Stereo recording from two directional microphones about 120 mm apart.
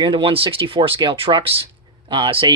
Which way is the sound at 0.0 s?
45° right (ahead or behind).